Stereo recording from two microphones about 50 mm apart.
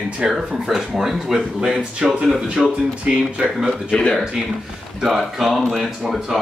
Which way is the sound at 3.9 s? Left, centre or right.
Centre.